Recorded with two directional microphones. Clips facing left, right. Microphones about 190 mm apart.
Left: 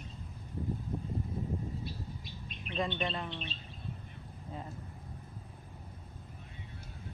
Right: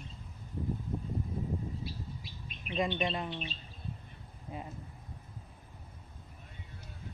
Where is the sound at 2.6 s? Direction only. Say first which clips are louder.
Right 2 dB; 10° right (ahead or behind).